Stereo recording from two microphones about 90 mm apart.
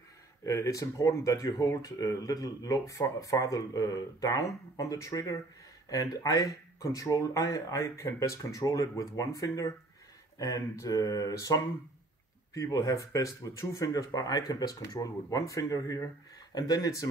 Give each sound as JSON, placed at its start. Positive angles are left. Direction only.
{"t": 0.5, "sound": "speech", "side_deg": 35}